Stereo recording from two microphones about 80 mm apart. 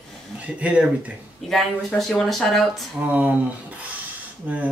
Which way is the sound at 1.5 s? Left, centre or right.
Centre.